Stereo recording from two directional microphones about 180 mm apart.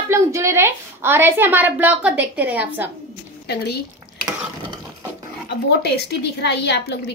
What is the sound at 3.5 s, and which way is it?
Speech, 65° left (ahead or behind).